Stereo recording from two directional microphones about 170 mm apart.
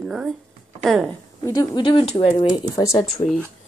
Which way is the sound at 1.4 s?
20° left (ahead or behind).